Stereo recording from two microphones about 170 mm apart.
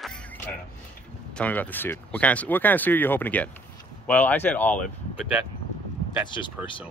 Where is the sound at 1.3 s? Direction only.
10° left (ahead or behind).